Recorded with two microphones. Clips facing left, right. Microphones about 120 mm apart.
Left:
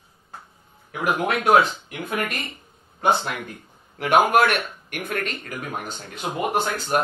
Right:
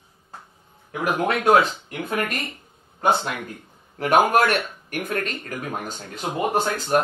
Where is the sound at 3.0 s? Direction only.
40° right (ahead or behind).